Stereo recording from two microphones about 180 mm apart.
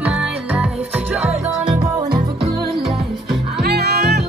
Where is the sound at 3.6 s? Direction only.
65° right (ahead or behind).